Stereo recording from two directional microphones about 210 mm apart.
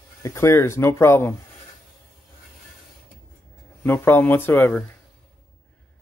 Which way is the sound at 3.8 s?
10° left (ahead or behind).